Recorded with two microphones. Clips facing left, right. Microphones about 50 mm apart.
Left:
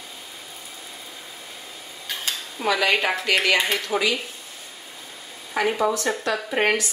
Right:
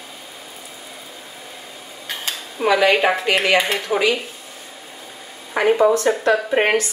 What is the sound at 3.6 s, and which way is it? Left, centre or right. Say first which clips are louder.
Speech: right 4 dB; centre.